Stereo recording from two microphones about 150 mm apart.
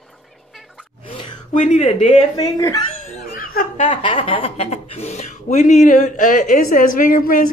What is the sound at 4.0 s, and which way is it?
Speech, 35° left (ahead or behind).